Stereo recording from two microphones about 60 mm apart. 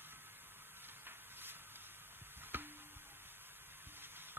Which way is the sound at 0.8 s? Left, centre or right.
Right.